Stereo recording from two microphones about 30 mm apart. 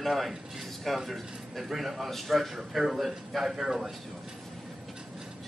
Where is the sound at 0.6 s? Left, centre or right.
Centre.